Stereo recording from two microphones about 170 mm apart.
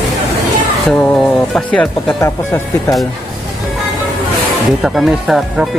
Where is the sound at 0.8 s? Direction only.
5° left (ahead or behind).